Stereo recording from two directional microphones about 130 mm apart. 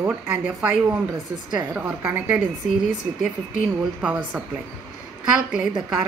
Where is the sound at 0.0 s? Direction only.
15° right (ahead or behind).